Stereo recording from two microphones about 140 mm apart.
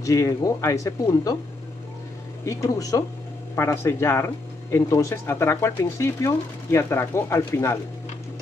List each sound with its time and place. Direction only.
0.0 s speech: 25° left (ahead or behind)
2.4 s speech: 20° left (ahead or behind)